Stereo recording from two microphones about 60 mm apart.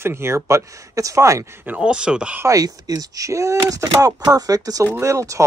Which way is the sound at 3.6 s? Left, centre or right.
Right.